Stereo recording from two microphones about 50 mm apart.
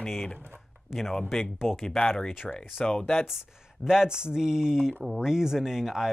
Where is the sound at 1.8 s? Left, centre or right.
Centre.